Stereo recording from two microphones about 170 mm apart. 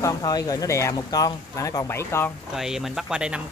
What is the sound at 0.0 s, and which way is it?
Speech, 20° left (ahead or behind).